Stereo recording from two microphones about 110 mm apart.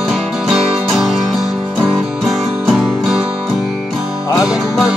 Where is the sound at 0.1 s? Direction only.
Centre (ahead or behind).